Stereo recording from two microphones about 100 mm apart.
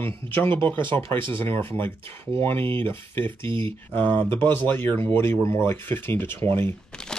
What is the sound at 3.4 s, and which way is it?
Speech, 55° right (ahead or behind).